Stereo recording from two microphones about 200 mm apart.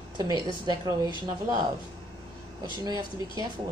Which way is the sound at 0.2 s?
20° right (ahead or behind).